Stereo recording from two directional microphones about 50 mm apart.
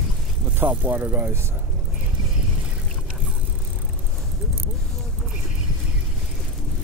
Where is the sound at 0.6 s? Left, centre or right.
Right.